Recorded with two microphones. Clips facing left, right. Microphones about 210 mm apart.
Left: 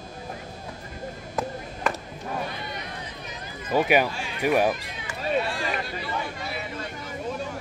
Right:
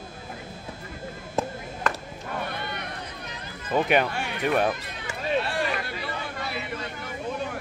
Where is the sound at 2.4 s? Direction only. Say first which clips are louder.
Right 1 dB; 60° right (ahead or behind).